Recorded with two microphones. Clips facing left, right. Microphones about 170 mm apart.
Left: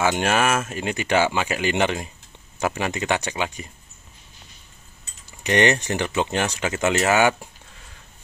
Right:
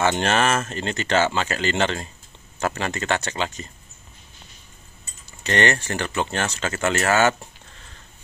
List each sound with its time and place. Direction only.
0.0 s speech: 10° left (ahead or behind)
5.4 s speech: 15° left (ahead or behind)